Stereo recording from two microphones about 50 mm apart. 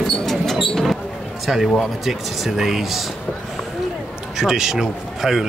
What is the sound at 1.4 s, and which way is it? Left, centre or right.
Speech, centre.